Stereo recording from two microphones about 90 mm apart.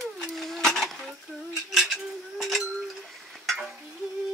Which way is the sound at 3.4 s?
Centre (ahead or behind).